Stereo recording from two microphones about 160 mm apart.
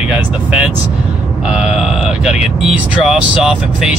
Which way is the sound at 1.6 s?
5° right (ahead or behind).